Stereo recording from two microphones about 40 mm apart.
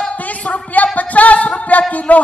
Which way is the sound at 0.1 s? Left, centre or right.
Left.